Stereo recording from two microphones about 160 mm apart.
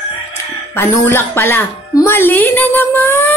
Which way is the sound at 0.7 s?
15° left (ahead or behind).